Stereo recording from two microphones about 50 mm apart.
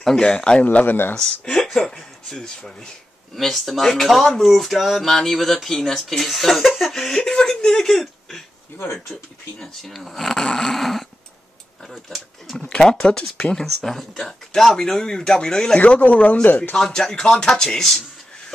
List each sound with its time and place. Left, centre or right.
0.0 s speech: centre
0.3 s speech: centre
0.7 s speech: left
1.1 s speech: centre
3.3 s speech: centre
7.2 s speech: centre
9.6 s speech: centre
12.5 s speech: centre
15.8 s speech: left
16.7 s speech: centre